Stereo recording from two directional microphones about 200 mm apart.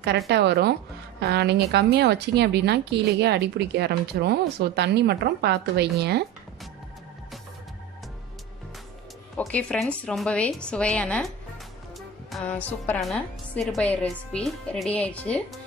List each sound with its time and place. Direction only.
0.3 s speech: 55° right (ahead or behind)
9.4 s a woman's voice: 5° left (ahead or behind)